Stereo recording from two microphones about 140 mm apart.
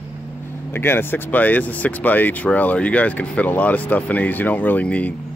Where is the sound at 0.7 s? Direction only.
15° left (ahead or behind).